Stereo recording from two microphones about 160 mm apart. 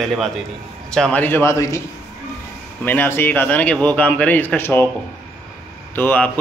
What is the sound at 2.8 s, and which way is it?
Speech, 15° left (ahead or behind).